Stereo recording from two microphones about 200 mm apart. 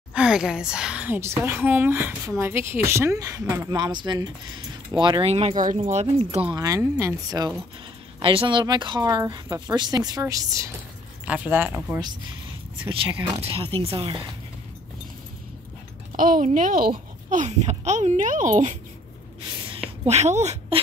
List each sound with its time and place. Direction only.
0.1 s a woman's voice: 5° right (ahead or behind); by 6.4 s 30° right (ahead or behind)
6.5 s a woman's voice: 20° right (ahead or behind)
12.8 s speech: 25° right (ahead or behind)
16.1 s a child's voice: 40° right (ahead or behind)